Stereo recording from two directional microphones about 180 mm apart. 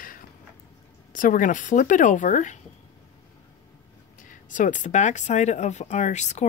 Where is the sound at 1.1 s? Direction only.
50° left (ahead or behind).